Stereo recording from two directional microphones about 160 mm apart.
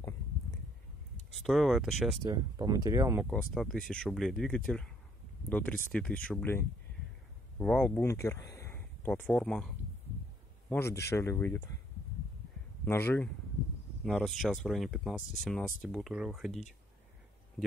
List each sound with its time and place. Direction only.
1.4 s speech: centre (ahead or behind)
2.2 s speech: 25° right (ahead or behind)
3.5 s speech: centre (ahead or behind)
10.7 s speech: 15° left (ahead or behind)
12.8 s speech: 15° left (ahead or behind)
14.0 s speech: centre (ahead or behind)